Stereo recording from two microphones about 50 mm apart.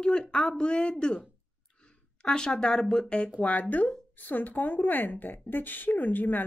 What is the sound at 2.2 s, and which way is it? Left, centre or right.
A woman's voice, centre.